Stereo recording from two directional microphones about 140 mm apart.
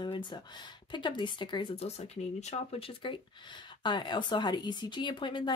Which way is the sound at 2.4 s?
50° left (ahead or behind).